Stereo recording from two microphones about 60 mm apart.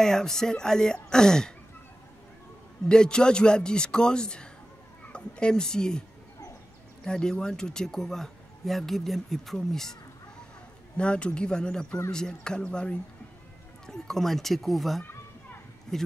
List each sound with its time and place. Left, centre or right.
0.0 s speech: centre
2.9 s speech: centre
7.1 s speech: centre
11.0 s speech: centre